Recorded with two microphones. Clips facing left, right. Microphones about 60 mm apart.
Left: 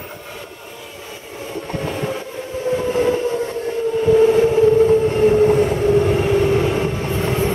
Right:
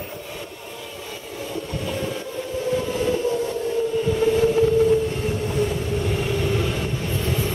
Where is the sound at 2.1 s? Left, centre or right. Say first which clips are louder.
Left 1 dB; left.